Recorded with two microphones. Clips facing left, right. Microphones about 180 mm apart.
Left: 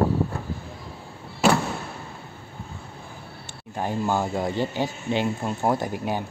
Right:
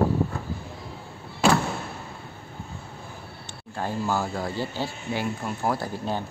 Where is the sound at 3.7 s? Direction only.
20° left (ahead or behind).